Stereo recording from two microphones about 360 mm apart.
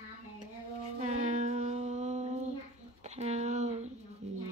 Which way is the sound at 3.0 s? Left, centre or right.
Centre.